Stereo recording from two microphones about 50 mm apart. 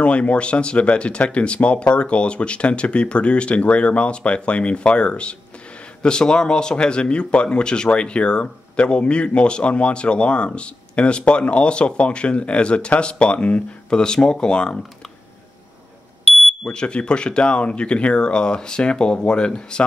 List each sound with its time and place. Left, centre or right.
0.0 s speech: left
16.3 s smoke detector: centre
16.6 s speech: left